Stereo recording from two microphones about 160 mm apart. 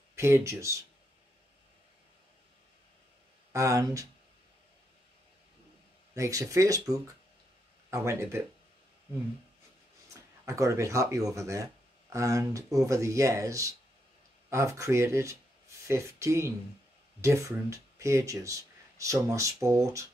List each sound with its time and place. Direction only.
0.1 s speech: 15° right (ahead or behind)
3.5 s speech: 20° right (ahead or behind)
6.1 s speech: 20° right (ahead or behind)
10.0 s speech: 20° right (ahead or behind)